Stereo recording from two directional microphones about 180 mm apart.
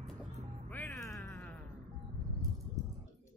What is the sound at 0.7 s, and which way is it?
Music, 10° left (ahead or behind).